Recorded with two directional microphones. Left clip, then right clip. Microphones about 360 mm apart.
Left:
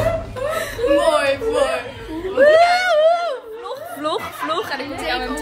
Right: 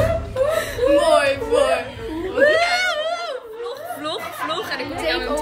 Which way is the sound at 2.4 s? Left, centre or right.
Centre.